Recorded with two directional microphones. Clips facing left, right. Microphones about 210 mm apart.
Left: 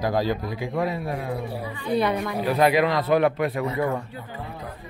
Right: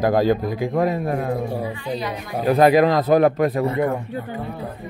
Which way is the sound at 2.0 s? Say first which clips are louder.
Left 5 dB; 60° left (ahead or behind).